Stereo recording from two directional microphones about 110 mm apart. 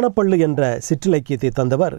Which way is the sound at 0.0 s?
15° right (ahead or behind).